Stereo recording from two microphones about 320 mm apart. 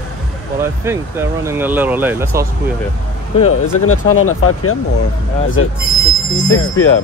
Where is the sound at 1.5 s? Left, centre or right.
Centre.